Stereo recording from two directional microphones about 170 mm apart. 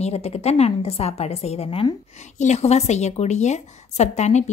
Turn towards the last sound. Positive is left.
turn(degrees=40)  # may be behind; listen again after turning